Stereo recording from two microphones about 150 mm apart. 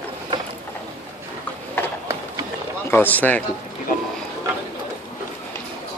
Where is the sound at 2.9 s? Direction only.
10° left (ahead or behind).